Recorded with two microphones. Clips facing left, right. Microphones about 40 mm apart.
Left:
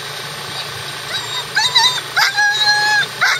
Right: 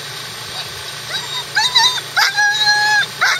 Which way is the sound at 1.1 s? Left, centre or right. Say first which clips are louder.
Even; centre.